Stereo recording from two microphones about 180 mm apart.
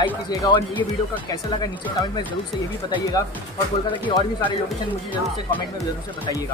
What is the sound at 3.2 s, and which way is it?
Speech, 20° left (ahead or behind).